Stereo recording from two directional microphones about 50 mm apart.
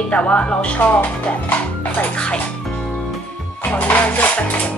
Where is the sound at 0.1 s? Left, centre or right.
Left.